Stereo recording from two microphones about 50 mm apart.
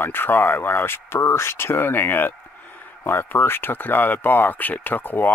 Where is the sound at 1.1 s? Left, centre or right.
Left.